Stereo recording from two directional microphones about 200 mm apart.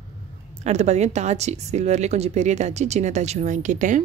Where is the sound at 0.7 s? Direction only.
35° right (ahead or behind).